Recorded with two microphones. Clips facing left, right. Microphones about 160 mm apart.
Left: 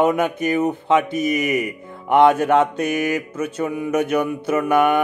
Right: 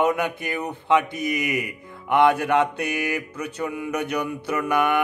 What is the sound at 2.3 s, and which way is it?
Mantra, 45° left (ahead or behind).